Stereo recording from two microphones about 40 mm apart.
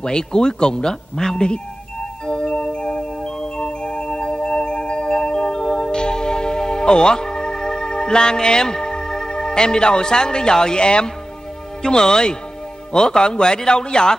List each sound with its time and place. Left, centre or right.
0.0 s speech: centre
2.2 s music: left
11.8 s speech: centre